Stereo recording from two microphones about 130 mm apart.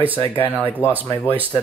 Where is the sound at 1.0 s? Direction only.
20° left (ahead or behind).